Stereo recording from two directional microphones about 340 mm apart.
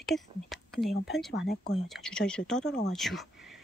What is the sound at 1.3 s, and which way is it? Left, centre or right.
Speech, left.